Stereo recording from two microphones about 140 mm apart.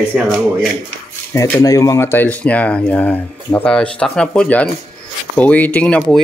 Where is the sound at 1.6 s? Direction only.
25° left (ahead or behind).